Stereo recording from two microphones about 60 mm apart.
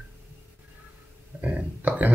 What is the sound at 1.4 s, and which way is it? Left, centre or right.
Speech, right.